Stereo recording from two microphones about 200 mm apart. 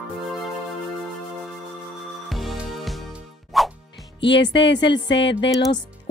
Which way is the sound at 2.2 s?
Centre (ahead or behind).